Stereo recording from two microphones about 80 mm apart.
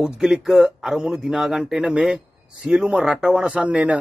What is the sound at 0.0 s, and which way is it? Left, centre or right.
Speech, centre.